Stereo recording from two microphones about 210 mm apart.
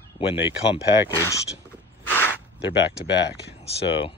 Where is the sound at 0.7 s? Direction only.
15° left (ahead or behind).